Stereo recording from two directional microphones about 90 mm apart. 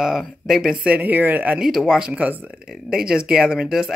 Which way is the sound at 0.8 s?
15° right (ahead or behind).